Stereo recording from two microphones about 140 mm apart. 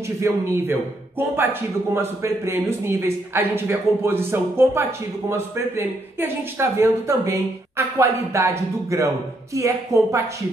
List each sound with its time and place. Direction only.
0.2 s speech: 15° right (ahead or behind)